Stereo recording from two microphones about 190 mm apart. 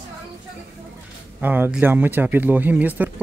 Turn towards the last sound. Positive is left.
turn(degrees=-10)  # may be behind; listen again after turning